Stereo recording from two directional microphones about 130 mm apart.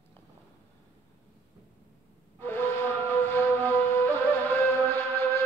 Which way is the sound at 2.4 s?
15° left (ahead or behind).